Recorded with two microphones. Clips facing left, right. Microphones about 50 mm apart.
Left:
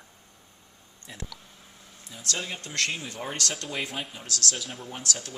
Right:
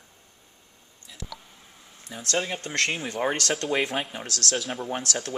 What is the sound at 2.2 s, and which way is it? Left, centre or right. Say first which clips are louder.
Speech: right 6 dB; right.